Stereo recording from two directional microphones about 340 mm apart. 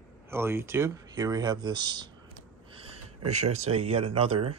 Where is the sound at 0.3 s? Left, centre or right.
Centre.